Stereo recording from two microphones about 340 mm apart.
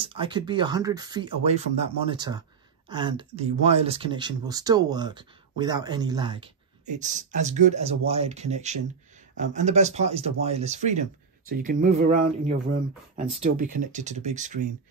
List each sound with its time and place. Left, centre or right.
0.0 s speech: centre